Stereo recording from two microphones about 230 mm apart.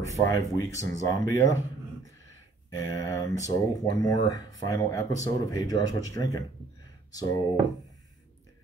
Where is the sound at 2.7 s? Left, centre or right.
Centre.